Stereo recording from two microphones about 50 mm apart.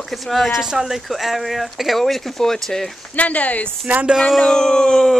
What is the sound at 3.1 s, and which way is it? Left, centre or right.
Speech, left.